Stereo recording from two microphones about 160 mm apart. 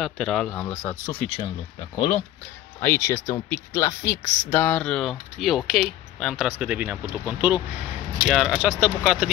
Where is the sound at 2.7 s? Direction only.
15° left (ahead or behind).